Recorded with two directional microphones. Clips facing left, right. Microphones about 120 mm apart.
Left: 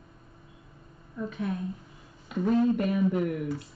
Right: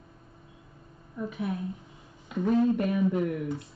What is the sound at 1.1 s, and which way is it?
Speech, 10° right (ahead or behind).